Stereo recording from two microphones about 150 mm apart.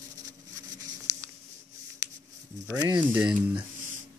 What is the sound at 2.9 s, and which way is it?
Speech, 10° right (ahead or behind).